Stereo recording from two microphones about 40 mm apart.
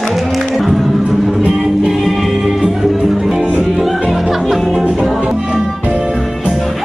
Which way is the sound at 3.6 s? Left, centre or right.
Centre.